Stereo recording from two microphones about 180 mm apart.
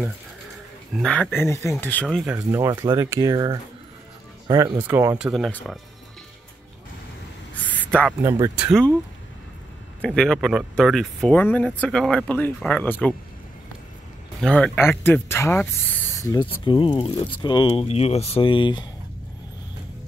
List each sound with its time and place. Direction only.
0.9 s speech: 5° left (ahead or behind)
2.2 s speech: 10° right (ahead or behind)
7.5 s a sound: 10° left (ahead or behind)
8.2 s speech: 15° right (ahead or behind)
10.0 s speech: 5° left (ahead or behind)
14.4 s speech: 5° left (ahead or behind); by 18.9 s 25° left (ahead or behind)